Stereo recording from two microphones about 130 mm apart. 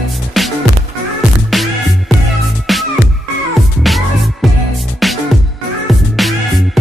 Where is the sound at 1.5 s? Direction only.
Centre (ahead or behind).